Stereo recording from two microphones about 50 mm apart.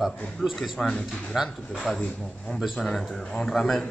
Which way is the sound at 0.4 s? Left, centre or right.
Centre.